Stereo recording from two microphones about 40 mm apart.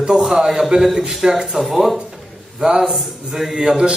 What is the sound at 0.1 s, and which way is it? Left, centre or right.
A man's voice, centre.